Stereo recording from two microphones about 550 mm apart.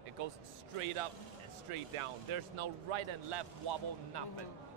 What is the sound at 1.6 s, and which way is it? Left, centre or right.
Speech, right.